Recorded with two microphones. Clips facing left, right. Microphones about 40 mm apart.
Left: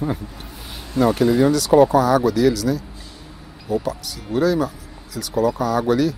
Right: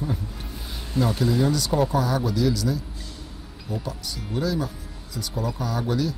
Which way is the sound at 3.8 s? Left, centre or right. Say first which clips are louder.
Left 6 dB; left.